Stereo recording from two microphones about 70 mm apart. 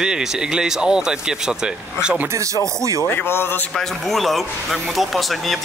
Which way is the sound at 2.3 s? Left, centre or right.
Right.